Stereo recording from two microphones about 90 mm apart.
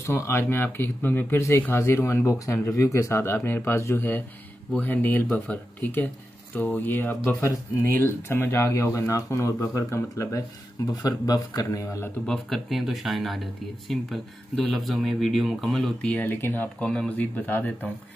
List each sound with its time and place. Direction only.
0.0 s speech: 30° left (ahead or behind)
10.9 s speech: 45° left (ahead or behind)
12.3 s speech: centre (ahead or behind); by 17.6 s 20° left (ahead or behind)